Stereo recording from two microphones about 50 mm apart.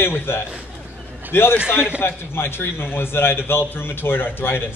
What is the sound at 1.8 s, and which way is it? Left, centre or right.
A man's voice, left.